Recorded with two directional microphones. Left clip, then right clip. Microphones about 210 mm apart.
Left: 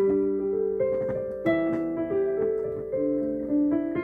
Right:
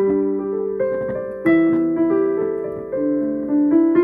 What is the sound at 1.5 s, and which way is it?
Music, 50° right (ahead or behind).